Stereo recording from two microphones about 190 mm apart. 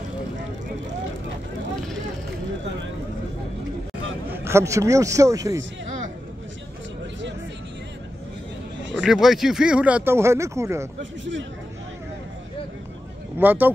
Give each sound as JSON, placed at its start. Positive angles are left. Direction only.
{"t": 4.3, "sound": "a man's voice", "side_deg": -15}
{"t": 9.0, "sound": "speech", "side_deg": 0}
{"t": 11.0, "sound": "a man's voice", "side_deg": -75}
{"t": 13.4, "sound": "speech", "side_deg": -10}